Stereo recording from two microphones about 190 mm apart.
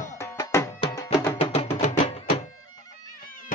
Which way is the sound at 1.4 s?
35° left (ahead or behind).